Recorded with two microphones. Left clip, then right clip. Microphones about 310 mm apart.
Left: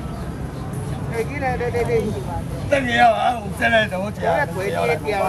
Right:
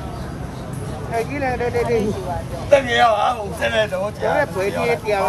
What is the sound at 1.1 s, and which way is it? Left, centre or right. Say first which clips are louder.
Speech: right 2 dB; right.